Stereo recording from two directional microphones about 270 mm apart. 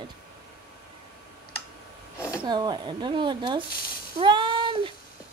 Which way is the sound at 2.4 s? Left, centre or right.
Centre.